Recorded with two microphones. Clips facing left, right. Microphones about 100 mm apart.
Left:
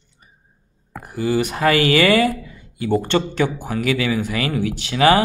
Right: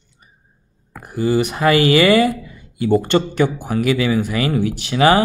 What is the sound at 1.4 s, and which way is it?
Speech, 20° right (ahead or behind).